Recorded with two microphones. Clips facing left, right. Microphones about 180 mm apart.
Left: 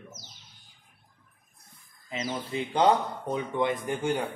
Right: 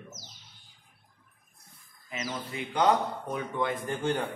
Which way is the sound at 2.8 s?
20° left (ahead or behind).